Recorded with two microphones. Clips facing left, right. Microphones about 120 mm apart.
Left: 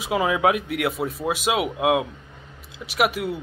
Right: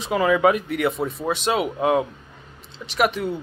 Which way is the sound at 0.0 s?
5° left (ahead or behind).